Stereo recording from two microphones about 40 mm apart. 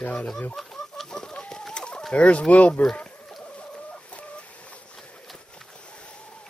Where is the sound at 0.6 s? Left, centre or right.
Centre.